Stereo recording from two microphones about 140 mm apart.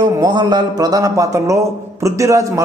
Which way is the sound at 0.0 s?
30° right (ahead or behind).